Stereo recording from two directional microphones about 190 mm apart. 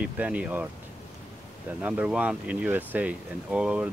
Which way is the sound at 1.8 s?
5° right (ahead or behind).